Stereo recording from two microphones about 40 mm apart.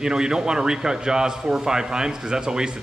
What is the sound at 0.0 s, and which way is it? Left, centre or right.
Speech, centre.